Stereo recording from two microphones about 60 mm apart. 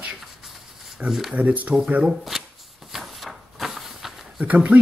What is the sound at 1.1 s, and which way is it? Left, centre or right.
Speech, centre.